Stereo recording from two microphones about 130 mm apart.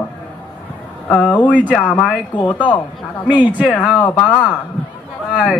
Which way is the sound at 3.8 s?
10° left (ahead or behind).